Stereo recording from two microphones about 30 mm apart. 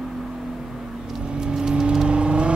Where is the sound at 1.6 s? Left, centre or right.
Right.